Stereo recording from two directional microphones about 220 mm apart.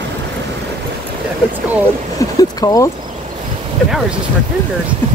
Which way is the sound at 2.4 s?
15° left (ahead or behind).